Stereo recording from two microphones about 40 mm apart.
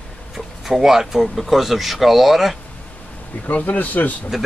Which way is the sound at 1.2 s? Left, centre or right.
Centre.